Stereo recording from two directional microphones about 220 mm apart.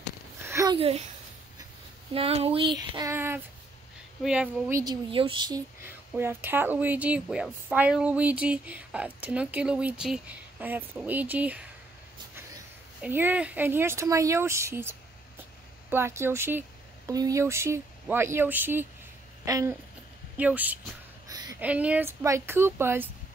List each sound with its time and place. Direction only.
0.5 s a sound: 15° right (ahead or behind)
0.7 s speech: 25° right (ahead or behind)
2.1 s speech: 25° right (ahead or behind)
3.0 s speech: 10° right (ahead or behind)
5.1 s speech: 25° right (ahead or behind)
5.9 s speech: 10° right (ahead or behind)
13.0 s speech: 10° right (ahead or behind)